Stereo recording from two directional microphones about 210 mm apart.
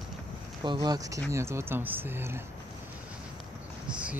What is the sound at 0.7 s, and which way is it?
Speech, 20° right (ahead or behind).